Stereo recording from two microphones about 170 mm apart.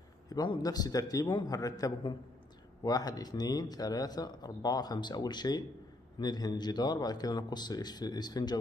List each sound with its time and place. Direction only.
0.3 s speech: 25° left (ahead or behind)